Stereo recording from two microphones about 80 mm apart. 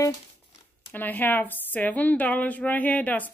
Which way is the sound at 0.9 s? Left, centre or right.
Left.